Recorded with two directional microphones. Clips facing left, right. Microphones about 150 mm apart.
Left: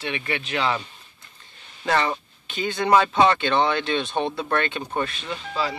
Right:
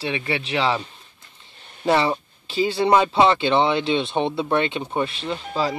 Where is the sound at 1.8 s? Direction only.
25° right (ahead or behind).